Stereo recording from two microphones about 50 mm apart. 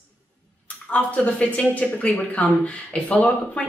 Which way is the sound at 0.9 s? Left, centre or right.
Left.